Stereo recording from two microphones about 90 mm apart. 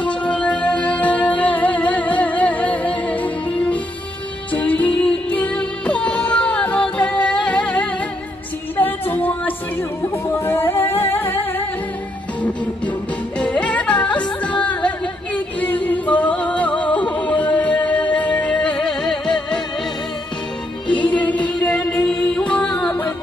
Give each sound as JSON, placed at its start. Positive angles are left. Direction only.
{"t": 0.0, "sound": "music", "side_deg": 15}
{"t": 13.4, "sound": "music", "side_deg": 15}
{"t": 21.1, "sound": "music", "side_deg": 15}